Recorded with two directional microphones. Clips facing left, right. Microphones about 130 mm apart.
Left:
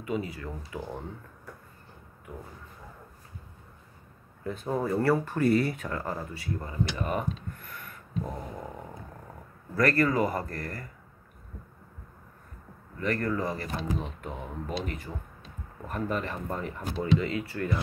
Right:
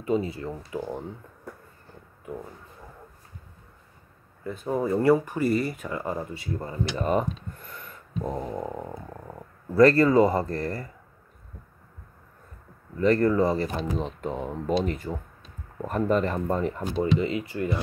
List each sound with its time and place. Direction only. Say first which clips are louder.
0.0 s speech: right 6 dB; 30° right (ahead or behind)
4.4 s speech: right 3 dB; centre (ahead or behind)
5.0 s speech: right 7 dB; 15° right (ahead or behind)
5.4 s speech: even; centre (ahead or behind); by 10.9 s 25° right (ahead or behind)
13.0 s speech: right 8 dB; 30° right (ahead or behind)